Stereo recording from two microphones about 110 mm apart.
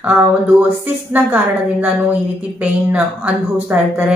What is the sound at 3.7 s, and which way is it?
Speech, 20° right (ahead or behind).